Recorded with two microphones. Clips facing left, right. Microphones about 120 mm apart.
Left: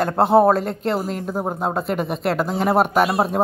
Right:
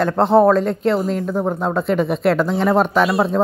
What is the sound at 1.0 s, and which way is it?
Speech, 40° left (ahead or behind).